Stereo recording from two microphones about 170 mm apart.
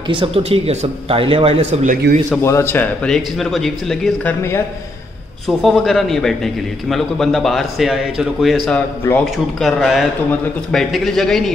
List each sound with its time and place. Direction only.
0.1 s a man's voice: 35° right (ahead or behind)
2.1 s a man's voice: 75° right (ahead or behind)
2.4 s speech: 15° left (ahead or behind)
5.6 s a man's voice: centre (ahead or behind)
8.6 s a man's voice: 10° left (ahead or behind)